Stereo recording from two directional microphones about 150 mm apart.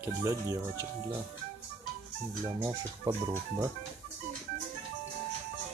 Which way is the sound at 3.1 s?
25° right (ahead or behind).